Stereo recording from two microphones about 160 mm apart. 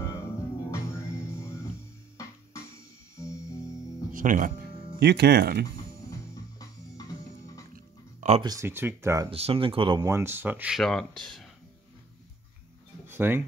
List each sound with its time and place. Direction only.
0.0 s music: 20° left (ahead or behind)
4.1 s speech: 55° right (ahead or behind)
4.9 s speech: 90° right
6.6 s music: 20° left (ahead or behind)
7.7 s music: 50° right (ahead or behind)
8.4 s speech: 20° right (ahead or behind)
9.3 s speech: 35° right (ahead or behind); by 10.8 s 10° right (ahead or behind)
10.8 s speech: 5° left (ahead or behind)
13.0 s a sound: 15° right (ahead or behind)